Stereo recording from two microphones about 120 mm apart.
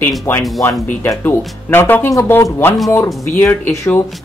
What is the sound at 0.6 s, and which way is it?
Speech, 20° left (ahead or behind).